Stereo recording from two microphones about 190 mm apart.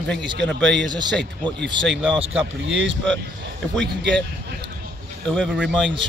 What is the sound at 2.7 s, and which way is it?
Speech, 75° right (ahead or behind).